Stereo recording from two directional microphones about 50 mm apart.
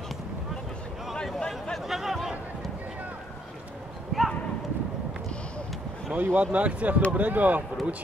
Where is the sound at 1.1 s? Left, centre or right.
Centre.